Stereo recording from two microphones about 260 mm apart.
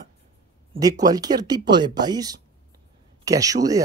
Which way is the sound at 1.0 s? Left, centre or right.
Centre.